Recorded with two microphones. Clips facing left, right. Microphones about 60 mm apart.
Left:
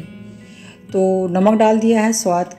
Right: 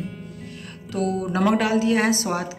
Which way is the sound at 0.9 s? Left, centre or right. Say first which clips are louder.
Left 9 dB; centre.